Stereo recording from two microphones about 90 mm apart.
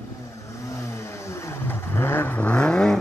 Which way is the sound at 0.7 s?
35° left (ahead or behind).